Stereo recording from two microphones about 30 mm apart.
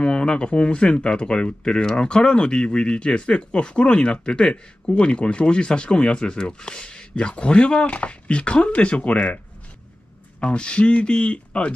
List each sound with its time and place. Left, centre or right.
0.0 s speech: left
7.8 s speech: left
10.4 s speech: left